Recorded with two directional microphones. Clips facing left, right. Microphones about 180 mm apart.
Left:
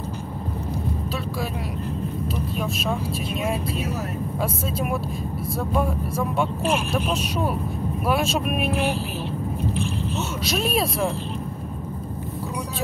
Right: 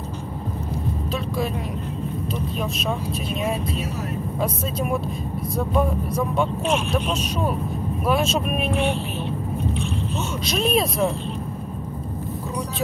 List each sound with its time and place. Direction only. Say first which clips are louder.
2.3 s speech: even; 5° left (ahead or behind)
4.4 s speech: right 1 dB; 5° left (ahead or behind)
9.8 s vehicle: even; 5° left (ahead or behind)